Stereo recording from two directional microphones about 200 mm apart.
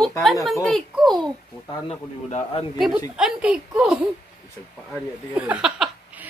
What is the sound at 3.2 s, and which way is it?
Speech, 5° right (ahead or behind).